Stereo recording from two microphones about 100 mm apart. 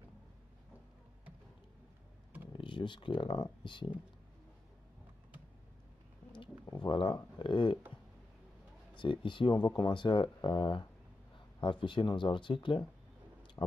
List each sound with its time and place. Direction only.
2.5 s speech: 55° left (ahead or behind)
6.6 s a sound: 35° left (ahead or behind)
6.9 s speech: 55° left (ahead or behind)
8.9 s speech: 55° left (ahead or behind)
13.6 s heart sounds: 40° left (ahead or behind)